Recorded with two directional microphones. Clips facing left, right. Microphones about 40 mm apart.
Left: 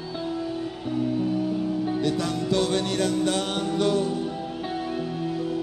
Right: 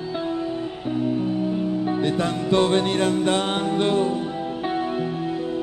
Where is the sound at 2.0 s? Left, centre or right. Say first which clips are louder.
Right 2 dB; right.